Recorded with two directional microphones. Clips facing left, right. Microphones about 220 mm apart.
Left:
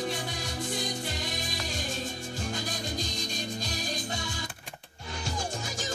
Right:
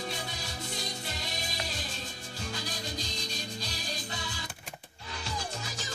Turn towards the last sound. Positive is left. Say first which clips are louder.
# left 4 dB
turn(degrees=45)  # may be behind; listen again after turning